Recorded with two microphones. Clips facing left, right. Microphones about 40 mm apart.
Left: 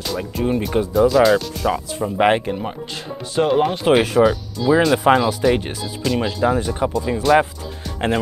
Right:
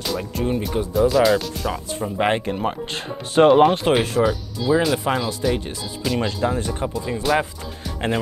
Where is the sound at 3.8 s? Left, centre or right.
Centre.